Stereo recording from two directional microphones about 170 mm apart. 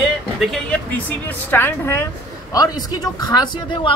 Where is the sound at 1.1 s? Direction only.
10° left (ahead or behind).